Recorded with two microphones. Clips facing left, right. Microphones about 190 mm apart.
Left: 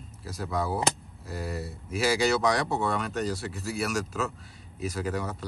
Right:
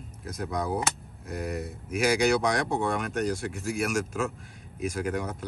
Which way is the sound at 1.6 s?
15° right (ahead or behind).